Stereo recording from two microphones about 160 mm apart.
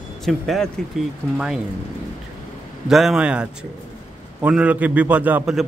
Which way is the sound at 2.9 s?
Centre (ahead or behind).